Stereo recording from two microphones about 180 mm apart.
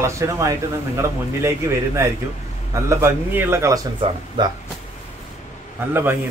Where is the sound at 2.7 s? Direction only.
15° right (ahead or behind).